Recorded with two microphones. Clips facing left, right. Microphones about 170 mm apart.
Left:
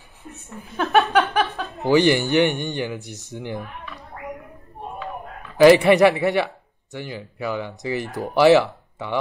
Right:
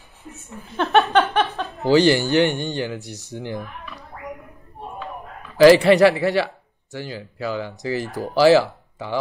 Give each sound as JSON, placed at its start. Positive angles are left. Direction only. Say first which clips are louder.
{"t": 0.7, "sound": "a woman's voice", "louder": "right 1 dB", "side_deg": 0}
{"t": 1.1, "sound": "a sound", "louder": "right 1 dB", "side_deg": 0}
{"t": 1.7, "sound": "speech", "louder": "right 1 dB", "side_deg": 20}
{"t": 5.6, "sound": "speech", "louder": "right 1 dB", "side_deg": 20}
{"t": 8.4, "sound": "speech", "louder": "even", "side_deg": 65}